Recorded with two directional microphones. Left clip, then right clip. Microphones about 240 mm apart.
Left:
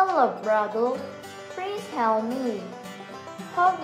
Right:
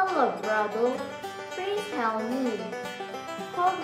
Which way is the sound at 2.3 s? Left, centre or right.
Centre.